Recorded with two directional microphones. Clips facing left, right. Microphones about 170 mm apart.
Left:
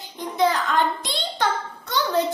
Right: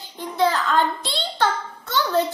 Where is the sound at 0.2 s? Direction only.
15° left (ahead or behind).